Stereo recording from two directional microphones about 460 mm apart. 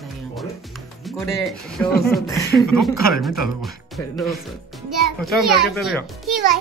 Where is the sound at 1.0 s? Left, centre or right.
Centre.